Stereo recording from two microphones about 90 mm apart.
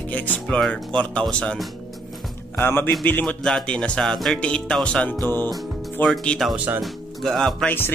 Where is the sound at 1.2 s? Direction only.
10° left (ahead or behind).